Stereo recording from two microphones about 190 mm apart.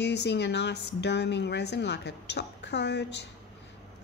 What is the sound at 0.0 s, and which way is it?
A woman's voice, 65° left (ahead or behind).